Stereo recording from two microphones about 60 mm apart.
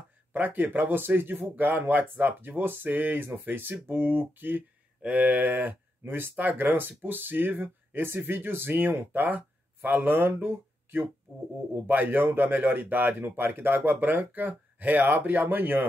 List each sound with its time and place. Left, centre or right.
0.3 s speech: right